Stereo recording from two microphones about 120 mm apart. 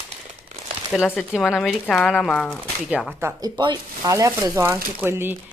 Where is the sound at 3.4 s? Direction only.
35° right (ahead or behind); by 5.4 s 20° right (ahead or behind).